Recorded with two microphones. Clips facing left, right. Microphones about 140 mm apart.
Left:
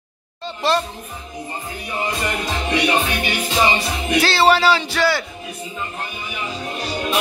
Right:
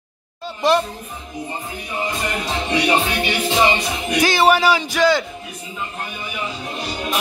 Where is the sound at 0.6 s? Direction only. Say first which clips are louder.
Right 3 dB; 15° right (ahead or behind).